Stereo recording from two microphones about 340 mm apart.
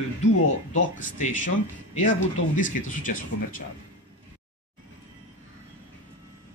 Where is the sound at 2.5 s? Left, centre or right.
Left.